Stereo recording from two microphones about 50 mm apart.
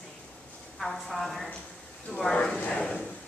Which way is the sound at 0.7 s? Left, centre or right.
Centre.